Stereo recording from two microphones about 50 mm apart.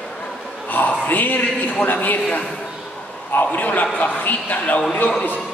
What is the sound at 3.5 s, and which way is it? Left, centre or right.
A man's voice, left.